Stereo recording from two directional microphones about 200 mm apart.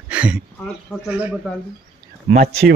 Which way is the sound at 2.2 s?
35° right (ahead or behind).